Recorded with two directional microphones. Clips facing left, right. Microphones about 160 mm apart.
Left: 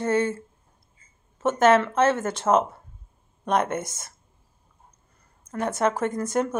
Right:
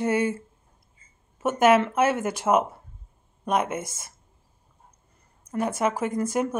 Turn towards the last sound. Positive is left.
turn(degrees=-10)  # may be behind; listen again after turning